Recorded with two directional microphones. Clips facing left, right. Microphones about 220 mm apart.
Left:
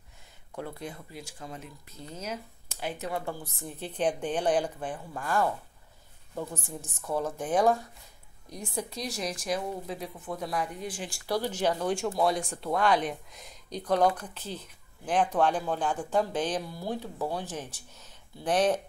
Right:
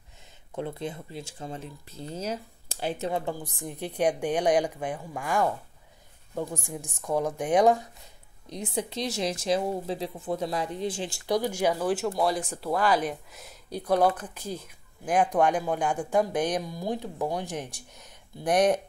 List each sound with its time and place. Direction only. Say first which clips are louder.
0.6 s speech: right 5 dB; 25° right (ahead or behind)